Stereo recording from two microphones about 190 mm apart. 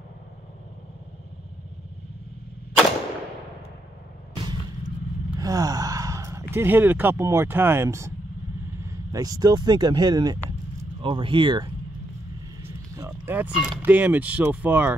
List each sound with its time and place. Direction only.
5.4 s gasp: 20° right (ahead or behind)
6.5 s speech: 10° right (ahead or behind)